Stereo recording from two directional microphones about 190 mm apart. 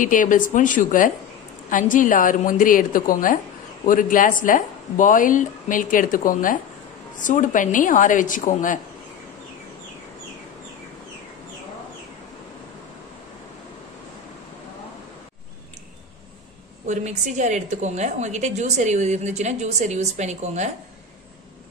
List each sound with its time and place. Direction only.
0.0 s speech: 45° left (ahead or behind)
16.8 s a woman's voice: 40° right (ahead or behind)